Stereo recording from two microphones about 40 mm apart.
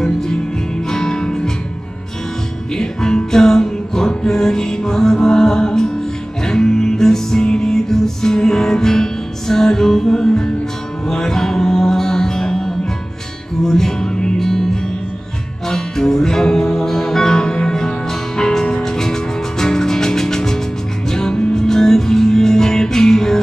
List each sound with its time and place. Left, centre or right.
0.8 s music: centre
2.7 s music: centre